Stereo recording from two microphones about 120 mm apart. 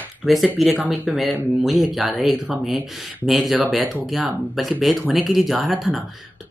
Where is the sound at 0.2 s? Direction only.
Centre (ahead or behind).